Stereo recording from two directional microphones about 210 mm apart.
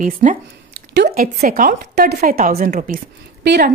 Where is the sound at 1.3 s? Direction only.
40° right (ahead or behind).